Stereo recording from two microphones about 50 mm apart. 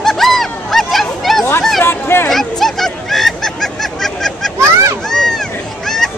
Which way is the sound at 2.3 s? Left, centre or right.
Centre.